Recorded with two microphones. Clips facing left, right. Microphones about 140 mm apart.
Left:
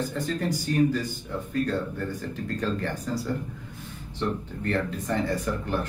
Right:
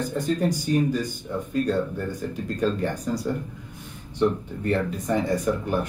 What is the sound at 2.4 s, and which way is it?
Speech, 15° right (ahead or behind).